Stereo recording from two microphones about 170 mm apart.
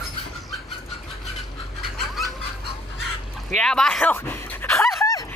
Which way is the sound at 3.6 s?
5° left (ahead or behind).